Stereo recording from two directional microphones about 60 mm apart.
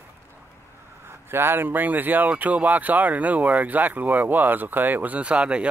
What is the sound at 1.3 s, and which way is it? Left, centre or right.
Speech, right.